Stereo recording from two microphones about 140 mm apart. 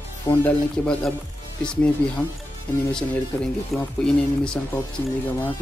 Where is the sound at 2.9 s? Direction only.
5° left (ahead or behind).